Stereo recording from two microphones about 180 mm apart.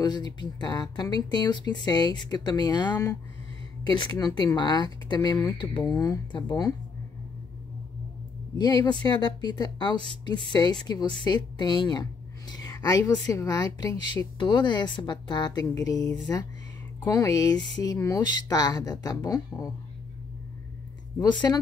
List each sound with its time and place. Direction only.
0.0 s speech: 25° left (ahead or behind)
8.5 s speech: 25° left (ahead or behind)
21.2 s speech: 20° left (ahead or behind)